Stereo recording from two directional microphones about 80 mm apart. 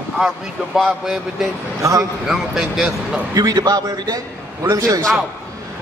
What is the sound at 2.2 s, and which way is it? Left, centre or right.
Speech, centre.